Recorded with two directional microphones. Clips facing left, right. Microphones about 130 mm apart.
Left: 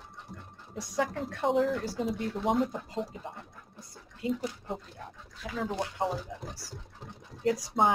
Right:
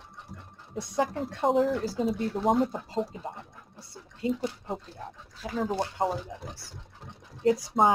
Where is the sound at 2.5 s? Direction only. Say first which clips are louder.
Right 2 dB; centre (ahead or behind).